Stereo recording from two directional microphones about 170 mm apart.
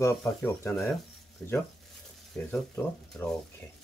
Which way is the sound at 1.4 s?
5° left (ahead or behind).